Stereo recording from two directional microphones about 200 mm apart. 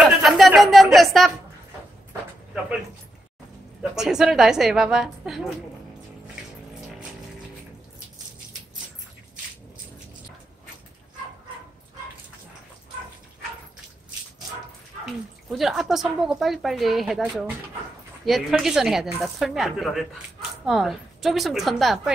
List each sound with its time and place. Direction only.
0.0 s a sound: centre (ahead or behind)
3.9 s speech: 5° right (ahead or behind)
15.5 s speech: centre (ahead or behind)